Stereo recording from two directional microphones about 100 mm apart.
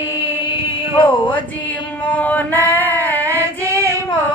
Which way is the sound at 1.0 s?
15° left (ahead or behind).